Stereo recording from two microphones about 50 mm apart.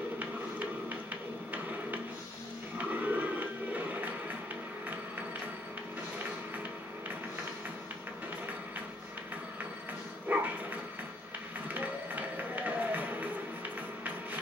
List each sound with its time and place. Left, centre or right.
1.5 s a sound: right
2.8 s music: right
10.3 s dog: right
11.8 s music: right